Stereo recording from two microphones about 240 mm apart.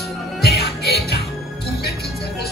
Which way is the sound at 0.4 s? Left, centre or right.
Left.